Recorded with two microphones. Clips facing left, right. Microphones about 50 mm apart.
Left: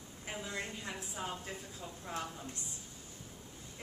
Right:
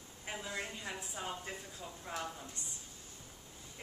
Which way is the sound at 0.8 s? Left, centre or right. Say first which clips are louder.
Left 1 dB; centre.